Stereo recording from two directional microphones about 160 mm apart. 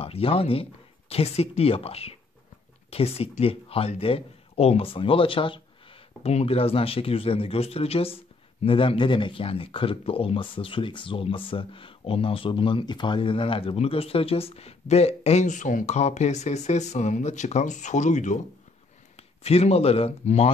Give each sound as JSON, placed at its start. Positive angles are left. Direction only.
{"t": 0.0, "sound": "speech", "side_deg": 35}